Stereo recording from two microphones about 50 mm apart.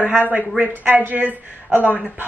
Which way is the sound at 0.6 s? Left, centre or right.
Right.